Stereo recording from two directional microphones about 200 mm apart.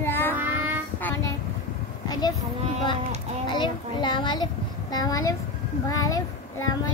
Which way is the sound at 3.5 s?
25° left (ahead or behind).